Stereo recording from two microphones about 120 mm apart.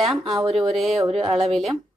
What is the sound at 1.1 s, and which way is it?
Speech, 55° right (ahead or behind).